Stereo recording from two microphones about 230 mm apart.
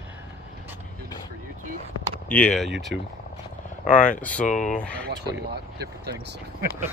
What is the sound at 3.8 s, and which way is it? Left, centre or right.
Speech, left.